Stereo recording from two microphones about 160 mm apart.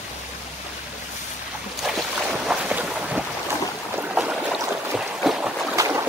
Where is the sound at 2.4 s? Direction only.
5° right (ahead or behind).